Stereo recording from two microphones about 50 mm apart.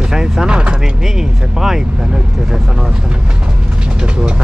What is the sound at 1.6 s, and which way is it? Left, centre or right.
Speech, centre.